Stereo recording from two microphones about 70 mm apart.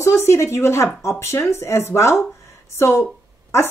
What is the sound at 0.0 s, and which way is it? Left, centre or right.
Speech, left.